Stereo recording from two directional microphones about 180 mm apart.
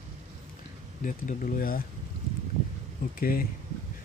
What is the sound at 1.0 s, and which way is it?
Speech, 45° left (ahead or behind).